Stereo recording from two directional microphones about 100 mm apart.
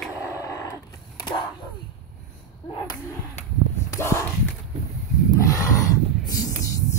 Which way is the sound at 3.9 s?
25° left (ahead or behind).